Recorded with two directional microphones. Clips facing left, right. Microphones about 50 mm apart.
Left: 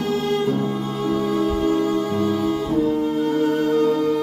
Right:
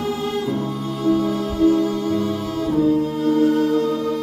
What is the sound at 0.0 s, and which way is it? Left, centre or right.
Music, left.